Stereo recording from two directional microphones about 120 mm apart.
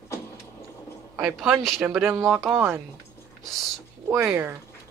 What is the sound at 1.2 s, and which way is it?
Speech, 5° right (ahead or behind).